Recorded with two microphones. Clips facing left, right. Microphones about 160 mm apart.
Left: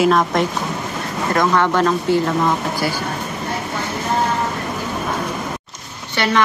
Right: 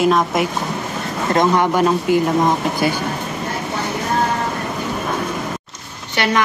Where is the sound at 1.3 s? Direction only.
20° right (ahead or behind).